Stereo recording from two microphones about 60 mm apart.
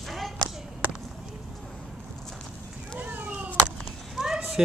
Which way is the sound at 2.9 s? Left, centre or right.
Right.